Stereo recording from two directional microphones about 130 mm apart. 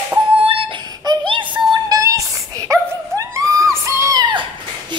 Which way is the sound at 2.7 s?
25° right (ahead or behind).